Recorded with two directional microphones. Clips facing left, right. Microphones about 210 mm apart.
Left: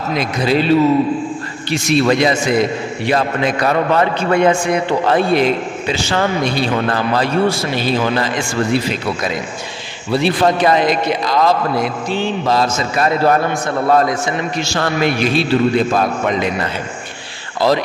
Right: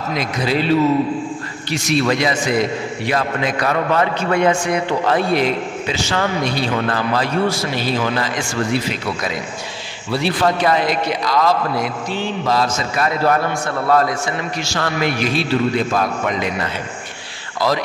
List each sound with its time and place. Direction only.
0.1 s a man's voice: 30° left (ahead or behind)
10.1 s a man's voice: 20° left (ahead or behind)